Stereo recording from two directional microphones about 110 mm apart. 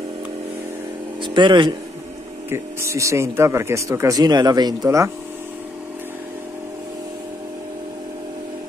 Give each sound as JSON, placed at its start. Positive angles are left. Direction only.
{"t": 1.2, "sound": "speech", "side_deg": -45}
{"t": 2.5, "sound": "speech", "side_deg": -25}
{"t": 4.8, "sound": "speech", "side_deg": -25}